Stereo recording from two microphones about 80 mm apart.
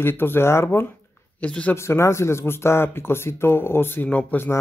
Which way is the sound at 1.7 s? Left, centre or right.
Left.